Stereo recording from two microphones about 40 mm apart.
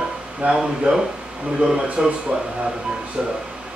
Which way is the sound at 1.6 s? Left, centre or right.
Right.